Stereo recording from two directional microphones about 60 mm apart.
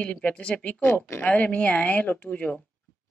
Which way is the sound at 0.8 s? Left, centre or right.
Left.